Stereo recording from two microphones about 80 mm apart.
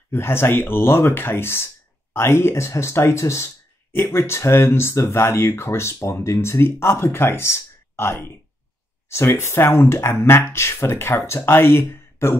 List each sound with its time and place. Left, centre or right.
0.1 s speech: left